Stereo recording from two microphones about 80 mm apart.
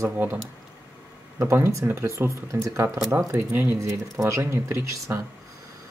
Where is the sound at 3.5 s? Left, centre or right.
Right.